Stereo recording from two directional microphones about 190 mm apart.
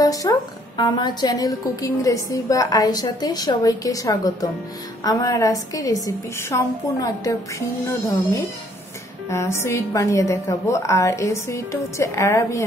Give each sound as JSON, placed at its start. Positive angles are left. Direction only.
{"t": 0.0, "sound": "a woman's voice", "side_deg": 20}